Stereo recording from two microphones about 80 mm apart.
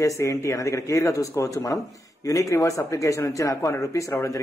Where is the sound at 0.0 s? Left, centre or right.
Left.